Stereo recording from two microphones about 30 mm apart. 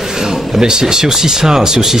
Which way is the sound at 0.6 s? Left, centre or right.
Right.